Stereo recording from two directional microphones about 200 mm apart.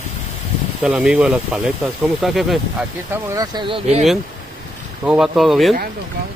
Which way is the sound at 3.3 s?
25° right (ahead or behind).